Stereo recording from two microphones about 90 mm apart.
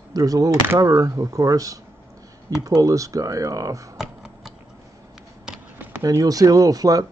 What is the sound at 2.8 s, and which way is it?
Speech, 40° right (ahead or behind).